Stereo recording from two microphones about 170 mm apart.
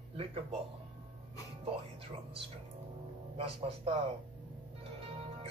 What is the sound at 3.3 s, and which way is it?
Speech, 35° right (ahead or behind).